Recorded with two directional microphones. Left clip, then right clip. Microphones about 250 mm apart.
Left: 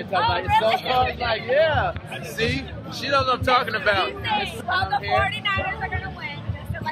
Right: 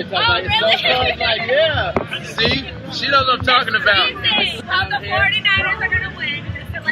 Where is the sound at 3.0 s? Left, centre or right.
Centre.